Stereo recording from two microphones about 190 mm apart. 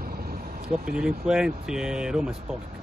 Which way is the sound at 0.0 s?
50° right (ahead or behind).